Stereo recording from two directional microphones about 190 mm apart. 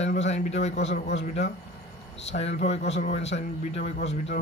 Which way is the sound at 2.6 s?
35° left (ahead or behind).